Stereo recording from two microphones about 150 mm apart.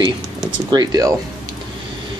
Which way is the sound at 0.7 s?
25° right (ahead or behind).